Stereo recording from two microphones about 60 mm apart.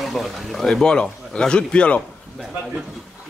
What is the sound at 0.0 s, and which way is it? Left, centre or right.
A man's voice, centre.